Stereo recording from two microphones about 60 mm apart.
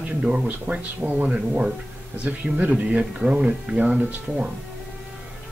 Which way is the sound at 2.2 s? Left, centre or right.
Right.